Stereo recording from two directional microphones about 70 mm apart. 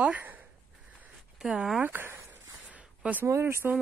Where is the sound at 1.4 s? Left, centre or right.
Centre.